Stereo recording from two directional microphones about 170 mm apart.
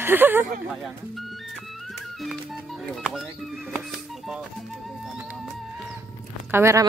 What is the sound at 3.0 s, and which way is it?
Speech, centre (ahead or behind).